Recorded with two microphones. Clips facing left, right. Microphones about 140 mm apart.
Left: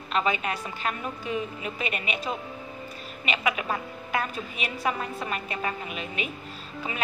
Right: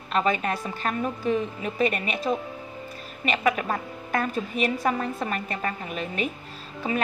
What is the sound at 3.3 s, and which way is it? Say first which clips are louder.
A woman's voice: right 4 dB; 45° right (ahead or behind).